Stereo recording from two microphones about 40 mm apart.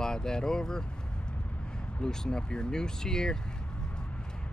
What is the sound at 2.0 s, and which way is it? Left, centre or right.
Speech, centre.